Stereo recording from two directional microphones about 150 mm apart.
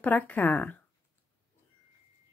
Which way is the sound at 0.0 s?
10° left (ahead or behind).